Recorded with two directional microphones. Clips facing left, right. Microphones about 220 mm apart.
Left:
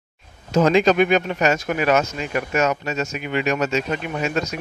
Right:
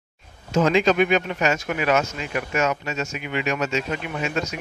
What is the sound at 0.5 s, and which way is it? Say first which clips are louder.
Speech: left 3 dB; 40° left (ahead or behind).